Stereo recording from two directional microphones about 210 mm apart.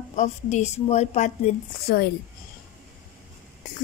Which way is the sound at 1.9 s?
50° left (ahead or behind).